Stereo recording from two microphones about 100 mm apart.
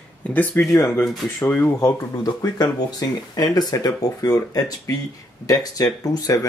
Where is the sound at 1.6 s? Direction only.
40° left (ahead or behind).